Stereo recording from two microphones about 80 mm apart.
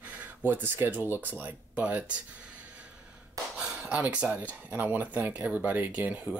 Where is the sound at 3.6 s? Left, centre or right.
Centre.